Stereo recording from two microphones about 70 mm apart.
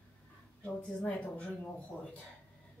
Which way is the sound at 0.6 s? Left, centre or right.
Centre.